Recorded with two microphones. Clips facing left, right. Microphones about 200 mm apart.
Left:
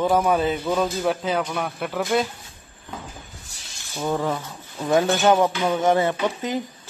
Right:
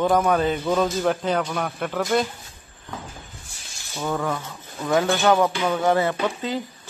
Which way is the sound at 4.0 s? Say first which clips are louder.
Left 2 dB; 20° left (ahead or behind).